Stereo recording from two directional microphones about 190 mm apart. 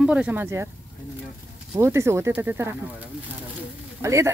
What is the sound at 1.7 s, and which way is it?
Speech, 15° right (ahead or behind).